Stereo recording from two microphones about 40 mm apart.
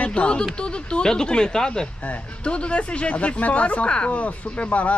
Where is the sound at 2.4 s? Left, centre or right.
Left.